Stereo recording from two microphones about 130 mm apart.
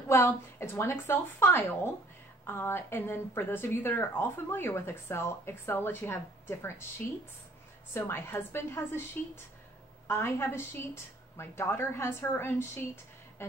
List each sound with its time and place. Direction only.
0.1 s a woman's voice: 20° left (ahead or behind)
7.9 s a woman's voice: 20° left (ahead or behind)